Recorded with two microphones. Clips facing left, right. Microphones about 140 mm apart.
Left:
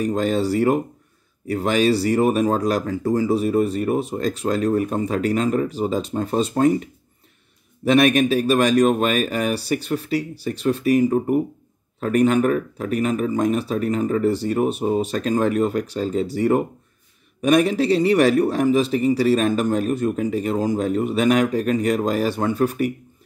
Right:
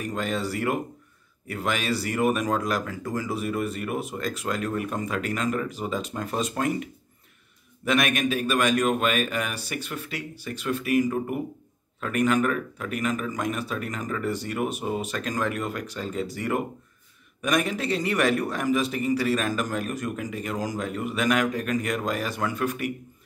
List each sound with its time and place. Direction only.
0.0 s a man's voice: 35° left (ahead or behind)
7.8 s a man's voice: 35° left (ahead or behind)